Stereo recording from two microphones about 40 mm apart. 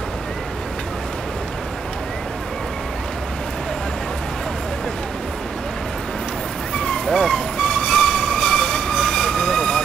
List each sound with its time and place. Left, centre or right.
7.1 s vehicle: centre
7.6 s train: left